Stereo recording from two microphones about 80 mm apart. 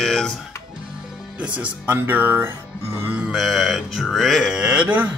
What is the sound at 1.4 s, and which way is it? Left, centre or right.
Speech, centre.